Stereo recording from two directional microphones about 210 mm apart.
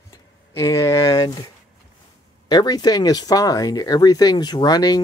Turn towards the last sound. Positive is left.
turn(degrees=20)  # may be behind; listen again after turning